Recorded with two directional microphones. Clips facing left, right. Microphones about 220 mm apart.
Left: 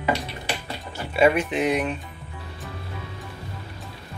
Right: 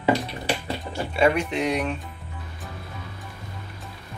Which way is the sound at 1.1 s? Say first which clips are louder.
Left 2 dB; 5° left (ahead or behind).